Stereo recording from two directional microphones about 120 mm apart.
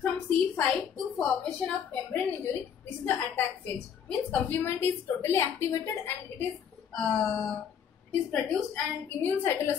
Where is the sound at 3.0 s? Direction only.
15° left (ahead or behind).